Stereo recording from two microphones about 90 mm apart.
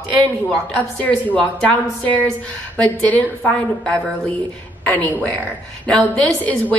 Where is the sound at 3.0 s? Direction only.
15° left (ahead or behind).